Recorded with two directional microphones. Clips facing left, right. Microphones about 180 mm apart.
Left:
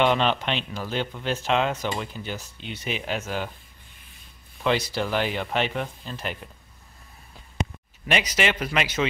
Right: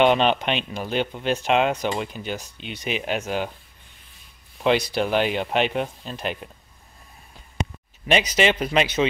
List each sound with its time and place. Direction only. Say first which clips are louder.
0.0 s speech: right 4 dB; 20° right (ahead or behind)
4.9 s speech: right 4 dB; 20° right (ahead or behind)
8.1 s speech: right 4 dB; 25° right (ahead or behind)